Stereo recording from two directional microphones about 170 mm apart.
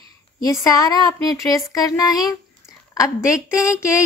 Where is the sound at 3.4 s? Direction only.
15° left (ahead or behind).